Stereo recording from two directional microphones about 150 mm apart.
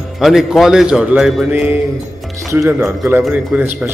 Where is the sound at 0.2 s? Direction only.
Centre (ahead or behind).